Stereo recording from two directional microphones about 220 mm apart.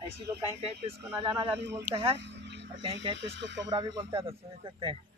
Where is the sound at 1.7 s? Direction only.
15° right (ahead or behind).